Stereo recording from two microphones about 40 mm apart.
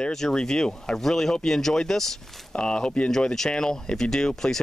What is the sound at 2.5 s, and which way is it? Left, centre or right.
Speech, left.